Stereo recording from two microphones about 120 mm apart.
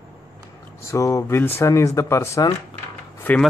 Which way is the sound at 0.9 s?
25° left (ahead or behind).